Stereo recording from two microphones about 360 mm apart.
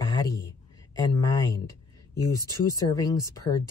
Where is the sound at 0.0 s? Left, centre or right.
Centre.